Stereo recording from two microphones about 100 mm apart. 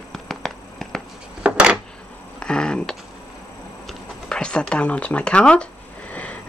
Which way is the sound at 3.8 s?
10° left (ahead or behind).